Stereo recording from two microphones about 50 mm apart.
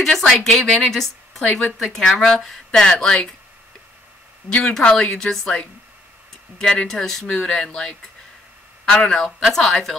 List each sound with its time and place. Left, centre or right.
0.0 s a woman's voice: centre
1.4 s a woman's voice: left
1.8 s speech: centre
4.5 s a woman's voice: left
6.6 s speech: centre
7.2 s speech: centre